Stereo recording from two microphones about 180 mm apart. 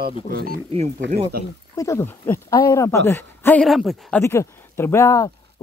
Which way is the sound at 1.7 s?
15° left (ahead or behind).